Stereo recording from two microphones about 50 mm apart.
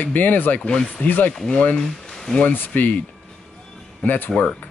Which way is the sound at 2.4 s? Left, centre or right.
Left.